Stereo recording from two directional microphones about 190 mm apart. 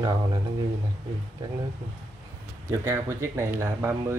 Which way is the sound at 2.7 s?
15° right (ahead or behind).